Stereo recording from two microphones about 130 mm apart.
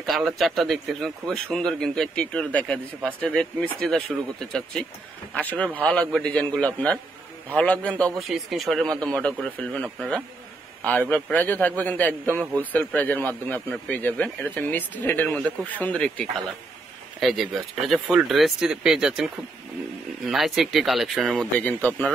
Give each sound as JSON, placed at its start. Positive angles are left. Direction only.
{"t": 0.0, "sound": "a man's voice", "side_deg": 0}
{"t": 8.2, "sound": "a man's voice", "side_deg": 0}
{"t": 21.5, "sound": "a man's voice", "side_deg": 10}